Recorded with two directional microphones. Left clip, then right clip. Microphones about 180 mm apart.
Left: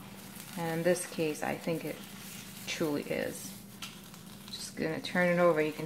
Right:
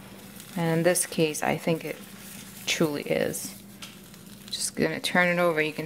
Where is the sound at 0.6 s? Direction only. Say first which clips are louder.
Right 6 dB; 55° right (ahead or behind).